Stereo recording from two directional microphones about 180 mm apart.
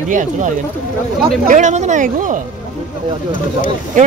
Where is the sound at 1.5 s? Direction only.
40° right (ahead or behind).